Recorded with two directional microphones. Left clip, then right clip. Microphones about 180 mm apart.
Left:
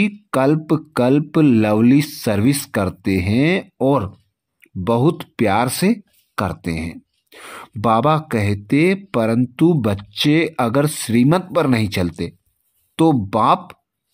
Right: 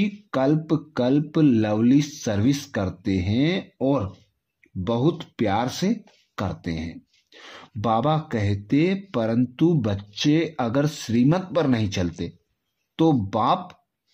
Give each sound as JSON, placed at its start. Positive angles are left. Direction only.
{"t": 0.0, "sound": "speech", "side_deg": 35}